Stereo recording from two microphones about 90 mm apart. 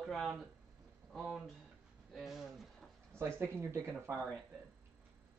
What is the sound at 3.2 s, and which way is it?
Speech, 25° right (ahead or behind).